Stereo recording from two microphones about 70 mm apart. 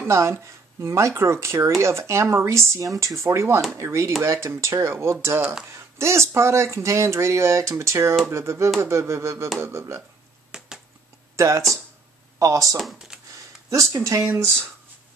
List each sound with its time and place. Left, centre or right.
0.0 s speech: right
10.5 s a sound: centre
11.3 s speech: right
12.7 s speech: centre
13.7 s speech: right